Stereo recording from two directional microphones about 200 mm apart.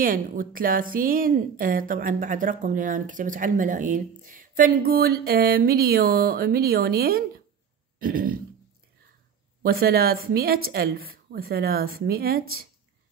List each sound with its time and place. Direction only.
0.0 s a woman's voice: 45° right (ahead or behind)
8.0 s throat clearing: 45° right (ahead or behind)
9.6 s a woman's voice: 50° right (ahead or behind)